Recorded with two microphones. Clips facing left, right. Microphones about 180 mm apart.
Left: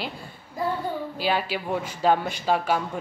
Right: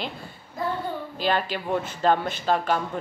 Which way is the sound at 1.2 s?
10° left (ahead or behind).